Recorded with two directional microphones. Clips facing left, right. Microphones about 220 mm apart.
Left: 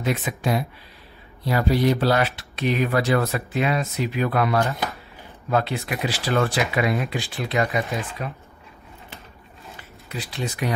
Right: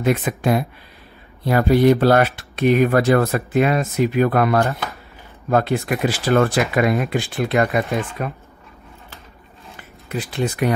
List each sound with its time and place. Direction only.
0.0 s speech: 55° right (ahead or behind)
10.0 s speech: 55° right (ahead or behind)